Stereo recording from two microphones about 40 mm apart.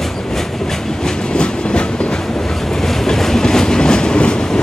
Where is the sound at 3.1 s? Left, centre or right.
Centre.